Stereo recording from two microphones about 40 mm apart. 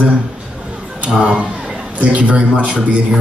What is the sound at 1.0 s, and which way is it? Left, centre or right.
A man's voice, right.